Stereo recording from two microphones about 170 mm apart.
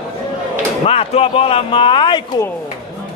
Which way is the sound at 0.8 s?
35° left (ahead or behind).